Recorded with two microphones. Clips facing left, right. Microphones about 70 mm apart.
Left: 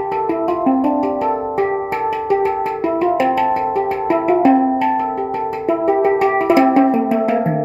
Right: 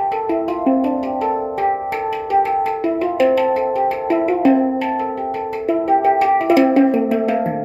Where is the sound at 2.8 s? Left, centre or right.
Left.